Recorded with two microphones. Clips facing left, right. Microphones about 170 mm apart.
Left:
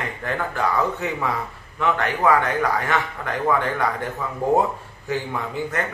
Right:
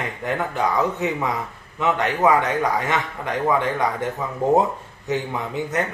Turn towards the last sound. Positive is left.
turn(degrees=-20)  # may be behind; listen again after turning